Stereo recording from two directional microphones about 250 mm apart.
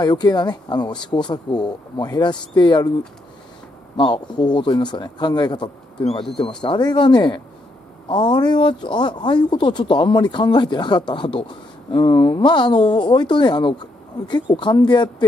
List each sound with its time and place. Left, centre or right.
0.0 s speech: centre
3.9 s speech: centre